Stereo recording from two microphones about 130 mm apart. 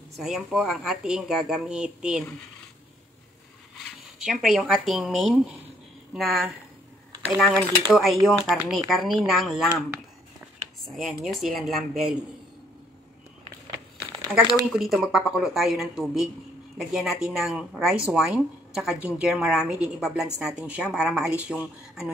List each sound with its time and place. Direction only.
0.2 s speech: centre (ahead or behind)
3.7 s speech: 5° right (ahead or behind)
11.0 s speech: centre (ahead or behind)
14.7 s speech: centre (ahead or behind)